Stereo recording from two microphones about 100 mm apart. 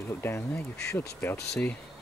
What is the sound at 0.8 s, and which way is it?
Speech, 25° left (ahead or behind).